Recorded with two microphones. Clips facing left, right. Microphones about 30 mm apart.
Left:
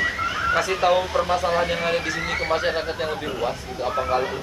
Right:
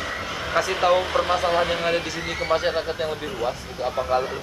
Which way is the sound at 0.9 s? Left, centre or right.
Right.